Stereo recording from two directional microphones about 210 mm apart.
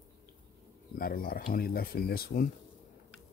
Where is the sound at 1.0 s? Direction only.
45° left (ahead or behind).